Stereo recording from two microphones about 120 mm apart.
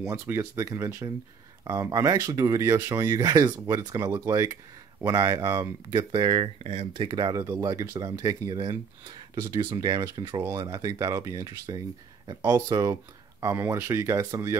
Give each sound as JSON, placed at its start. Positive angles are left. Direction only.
{"t": 0.0, "sound": "speech", "side_deg": -25}